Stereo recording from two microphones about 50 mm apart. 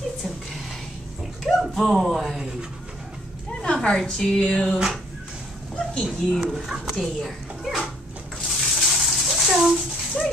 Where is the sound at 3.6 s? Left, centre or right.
Centre.